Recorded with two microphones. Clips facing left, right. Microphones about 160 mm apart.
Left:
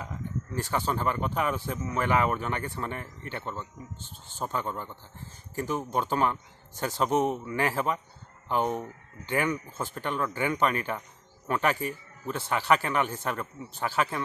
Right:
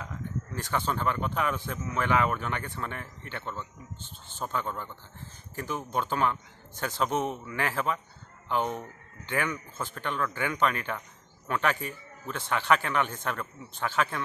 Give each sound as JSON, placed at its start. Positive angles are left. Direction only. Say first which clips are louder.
{"t": 0.6, "sound": "speech", "louder": "left 1 dB", "side_deg": 10}